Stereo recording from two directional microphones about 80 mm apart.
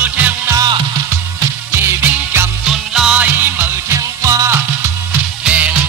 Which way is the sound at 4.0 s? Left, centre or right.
Right.